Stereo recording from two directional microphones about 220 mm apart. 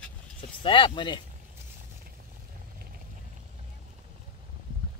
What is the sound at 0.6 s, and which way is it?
Speech, 25° left (ahead or behind).